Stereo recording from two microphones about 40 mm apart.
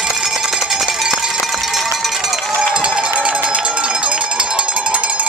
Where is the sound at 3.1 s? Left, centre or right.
Right.